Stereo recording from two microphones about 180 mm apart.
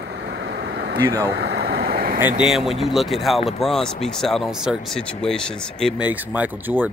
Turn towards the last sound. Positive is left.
turn(degrees=-10)  # may be behind; listen again after turning